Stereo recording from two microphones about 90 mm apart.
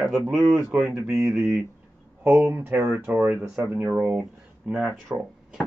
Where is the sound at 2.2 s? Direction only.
20° right (ahead or behind).